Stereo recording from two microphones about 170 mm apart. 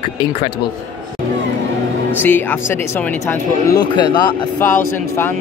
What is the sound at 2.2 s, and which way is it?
Speech, 10° left (ahead or behind).